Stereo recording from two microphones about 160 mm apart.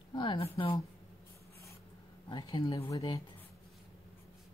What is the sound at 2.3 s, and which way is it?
Speech, 25° left (ahead or behind).